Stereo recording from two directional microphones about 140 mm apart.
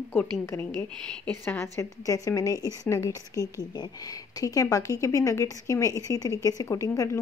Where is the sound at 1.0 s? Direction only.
10° left (ahead or behind).